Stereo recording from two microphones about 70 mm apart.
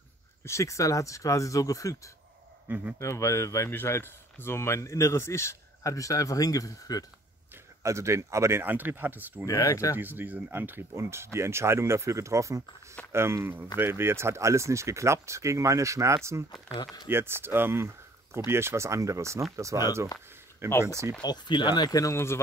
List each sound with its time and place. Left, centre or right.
0.5 s speech: left
2.7 s speech: right
3.0 s speech: left
7.8 s speech: right
8.7 s speech: right
9.5 s speech: left
9.9 s speech: right
11.0 s speech: right
16.7 s speech: left
17.1 s speech: right
21.2 s speech: left